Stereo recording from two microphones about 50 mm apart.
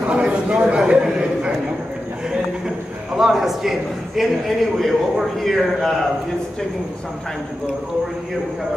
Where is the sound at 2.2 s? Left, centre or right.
Centre.